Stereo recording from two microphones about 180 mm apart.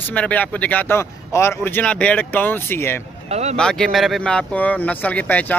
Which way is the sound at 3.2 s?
35° right (ahead or behind).